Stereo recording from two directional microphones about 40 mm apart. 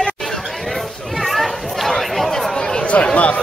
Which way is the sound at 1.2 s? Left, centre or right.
Centre.